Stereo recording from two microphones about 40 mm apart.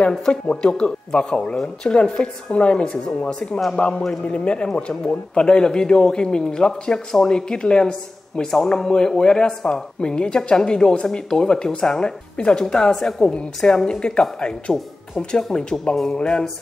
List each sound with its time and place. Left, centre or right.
0.3 s a man's voice: left
14.7 s speech: centre
15.1 s a man's voice: centre